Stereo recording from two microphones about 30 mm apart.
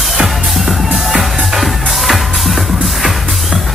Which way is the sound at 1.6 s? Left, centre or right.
Centre.